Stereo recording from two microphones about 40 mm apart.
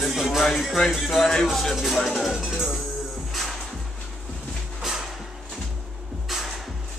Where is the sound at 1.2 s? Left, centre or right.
Centre.